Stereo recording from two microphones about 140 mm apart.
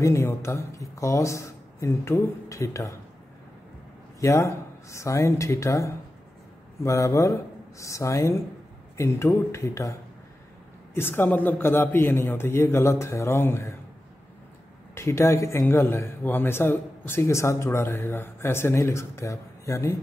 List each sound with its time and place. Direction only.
0.0 s a man's voice: 20° left (ahead or behind)
4.2 s a man's voice: 20° left (ahead or behind)
11.0 s a man's voice: 15° left (ahead or behind)
15.0 s a man's voice: 20° left (ahead or behind)